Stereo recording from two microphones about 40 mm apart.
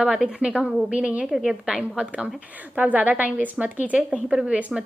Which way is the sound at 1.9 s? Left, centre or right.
Right.